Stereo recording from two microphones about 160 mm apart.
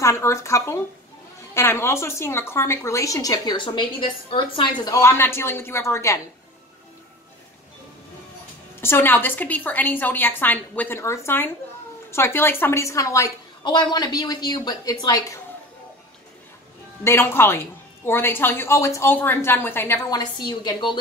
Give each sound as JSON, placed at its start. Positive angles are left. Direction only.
{"t": 0.0, "sound": "a woman's voice", "side_deg": 20}
{"t": 8.8, "sound": "a woman's voice", "side_deg": 15}
{"t": 17.0, "sound": "a woman's voice", "side_deg": 15}
{"t": 20.1, "sound": "a woman's voice", "side_deg": 25}